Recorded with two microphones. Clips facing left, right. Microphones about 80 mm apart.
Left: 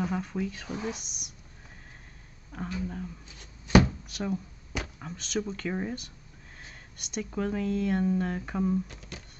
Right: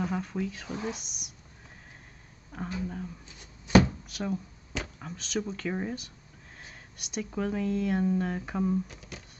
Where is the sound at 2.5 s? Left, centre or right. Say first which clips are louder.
Even; centre.